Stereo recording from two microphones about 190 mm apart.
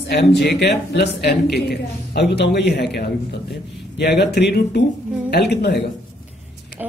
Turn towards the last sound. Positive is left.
turn(degrees=60)  # may be behind; listen again after turning